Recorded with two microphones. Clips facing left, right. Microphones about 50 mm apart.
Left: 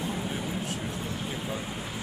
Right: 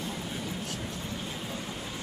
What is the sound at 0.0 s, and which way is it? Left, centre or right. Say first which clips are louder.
Vehicle: left 4 dB; centre.